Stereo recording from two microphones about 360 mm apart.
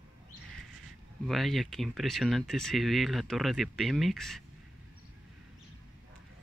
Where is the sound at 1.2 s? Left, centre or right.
Centre.